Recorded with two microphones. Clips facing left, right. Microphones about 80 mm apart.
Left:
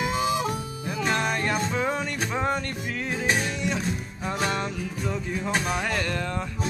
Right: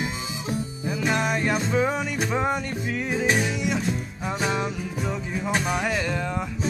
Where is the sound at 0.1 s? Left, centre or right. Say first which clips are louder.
Left 6 dB; left.